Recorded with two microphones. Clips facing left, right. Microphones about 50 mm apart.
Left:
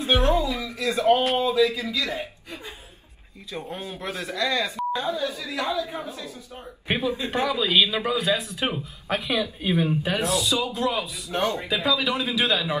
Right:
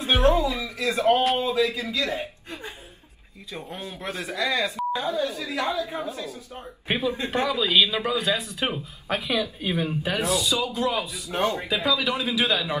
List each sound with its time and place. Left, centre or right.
0.0 s speech: right
3.7 s a man's voice: left
4.4 s speech: centre
5.0 s speech: right
6.9 s a man's voice: centre
11.3 s speech: right
11.6 s a man's voice: centre